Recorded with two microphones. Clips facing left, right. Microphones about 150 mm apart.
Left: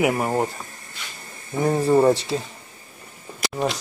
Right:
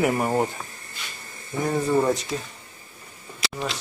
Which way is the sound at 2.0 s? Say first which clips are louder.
Left 5 dB; 30° left (ahead or behind).